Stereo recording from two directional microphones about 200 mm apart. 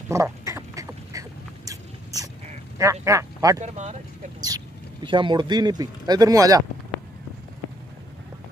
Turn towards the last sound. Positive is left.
turn(degrees=-15)  # may be behind; listen again after turning